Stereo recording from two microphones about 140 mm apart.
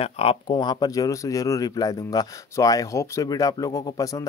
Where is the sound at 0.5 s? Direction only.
30° left (ahead or behind).